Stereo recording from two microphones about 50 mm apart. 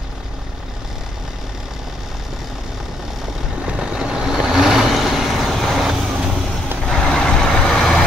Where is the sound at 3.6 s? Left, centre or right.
Centre.